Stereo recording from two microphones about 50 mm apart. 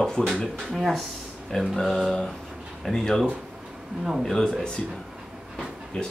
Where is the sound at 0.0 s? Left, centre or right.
Centre.